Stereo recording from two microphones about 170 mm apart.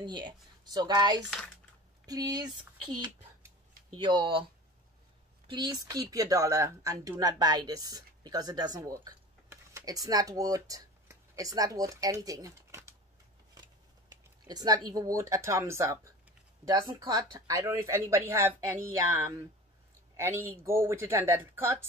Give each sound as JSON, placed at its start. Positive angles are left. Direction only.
{"t": 0.0, "sound": "speech", "side_deg": -25}
{"t": 5.5, "sound": "speech", "side_deg": -25}